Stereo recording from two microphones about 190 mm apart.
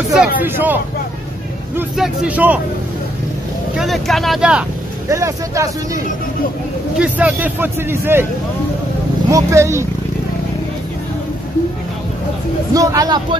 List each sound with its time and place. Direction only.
0.1 s speech: 5° right (ahead or behind)
1.8 s speech: 5° right (ahead or behind)
3.7 s speech: centre (ahead or behind)
5.1 s speech: 15° right (ahead or behind)
7.0 s speech: 5° right (ahead or behind)
9.3 s speech: 15° right (ahead or behind)
12.7 s speech: 20° right (ahead or behind)